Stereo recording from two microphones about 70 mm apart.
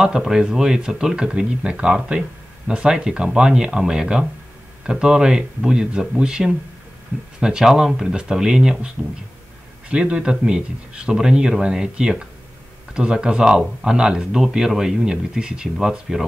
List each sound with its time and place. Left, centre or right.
0.0 s speech: centre